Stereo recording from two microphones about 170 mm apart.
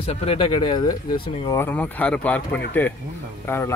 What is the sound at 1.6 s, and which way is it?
Speech, 10° left (ahead or behind).